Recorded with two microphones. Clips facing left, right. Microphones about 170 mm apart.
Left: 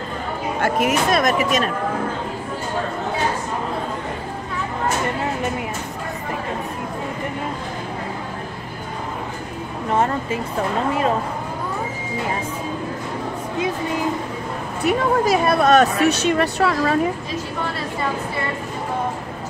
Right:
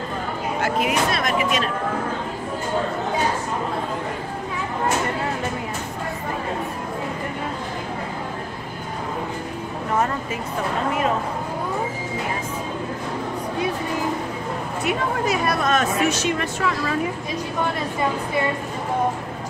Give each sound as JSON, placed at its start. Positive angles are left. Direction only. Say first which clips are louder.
{"t": 0.6, "sound": "speech", "louder": "left 3 dB", "side_deg": 45}
{"t": 9.9, "sound": "speech", "louder": "left 3 dB", "side_deg": 30}
{"t": 14.9, "sound": "speech", "louder": "left 6 dB", "side_deg": 35}
{"t": 15.8, "sound": "speech", "louder": "left 4 dB", "side_deg": 60}
{"t": 16.3, "sound": "speech", "louder": "left 5 dB", "side_deg": 40}